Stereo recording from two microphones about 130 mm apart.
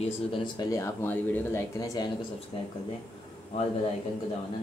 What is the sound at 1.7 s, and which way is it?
Speech, 30° left (ahead or behind).